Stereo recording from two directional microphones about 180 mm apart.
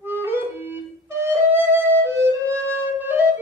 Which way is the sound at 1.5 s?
10° right (ahead or behind).